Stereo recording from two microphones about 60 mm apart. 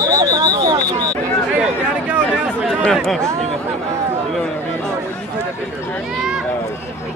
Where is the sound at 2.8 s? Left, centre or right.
Centre.